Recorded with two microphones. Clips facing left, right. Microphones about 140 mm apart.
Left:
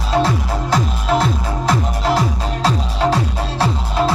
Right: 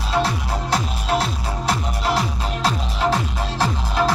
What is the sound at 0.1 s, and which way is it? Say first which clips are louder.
Music: left 4 dB; 45° left (ahead or behind).